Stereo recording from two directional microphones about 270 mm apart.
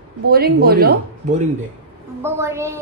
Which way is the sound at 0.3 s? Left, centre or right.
Right.